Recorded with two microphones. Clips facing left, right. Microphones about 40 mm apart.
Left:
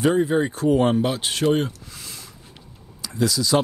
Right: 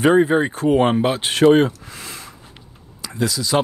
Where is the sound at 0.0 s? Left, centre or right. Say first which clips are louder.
Right 5 dB; right.